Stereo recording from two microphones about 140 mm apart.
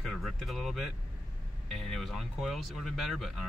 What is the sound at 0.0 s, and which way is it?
Speech, centre (ahead or behind).